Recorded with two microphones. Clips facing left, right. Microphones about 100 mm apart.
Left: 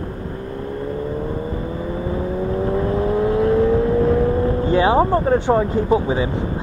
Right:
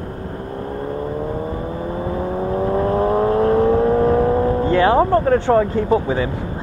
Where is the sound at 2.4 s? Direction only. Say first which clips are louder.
Right 2 dB; 40° right (ahead or behind).